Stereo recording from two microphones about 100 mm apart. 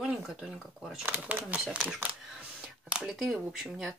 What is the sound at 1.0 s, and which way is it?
Speech, 15° right (ahead or behind).